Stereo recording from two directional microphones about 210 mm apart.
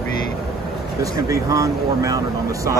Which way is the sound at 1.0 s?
15° right (ahead or behind).